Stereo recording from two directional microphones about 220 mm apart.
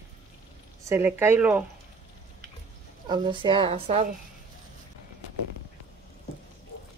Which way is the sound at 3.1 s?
20° right (ahead or behind).